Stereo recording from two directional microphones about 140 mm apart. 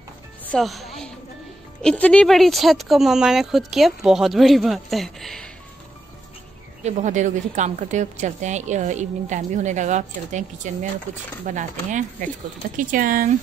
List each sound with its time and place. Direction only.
0.5 s speech: centre (ahead or behind)
6.8 s a woman's voice: 55° right (ahead or behind)
12.7 s speech: 75° right (ahead or behind)